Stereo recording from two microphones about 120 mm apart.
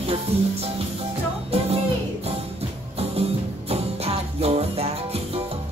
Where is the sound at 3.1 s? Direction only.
60° right (ahead or behind).